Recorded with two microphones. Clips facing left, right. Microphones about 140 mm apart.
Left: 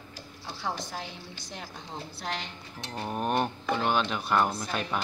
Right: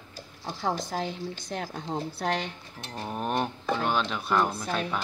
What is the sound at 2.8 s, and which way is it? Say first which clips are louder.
Speech: left 1 dB; 10° left (ahead or behind).